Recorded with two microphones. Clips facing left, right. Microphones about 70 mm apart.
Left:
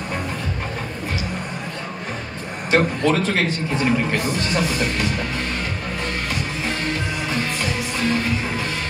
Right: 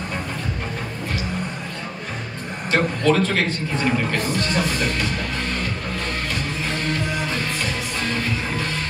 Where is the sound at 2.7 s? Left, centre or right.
Centre.